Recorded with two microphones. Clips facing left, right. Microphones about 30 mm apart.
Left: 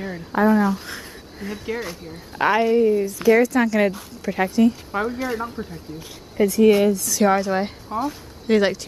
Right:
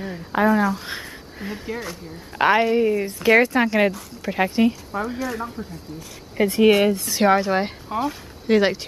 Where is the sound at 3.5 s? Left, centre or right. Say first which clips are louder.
Even; right.